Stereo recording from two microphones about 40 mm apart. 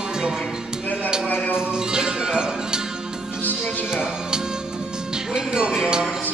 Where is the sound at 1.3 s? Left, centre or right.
Left.